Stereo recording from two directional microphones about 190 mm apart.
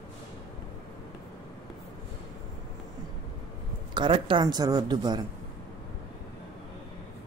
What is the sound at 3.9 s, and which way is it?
Speech, 25° right (ahead or behind).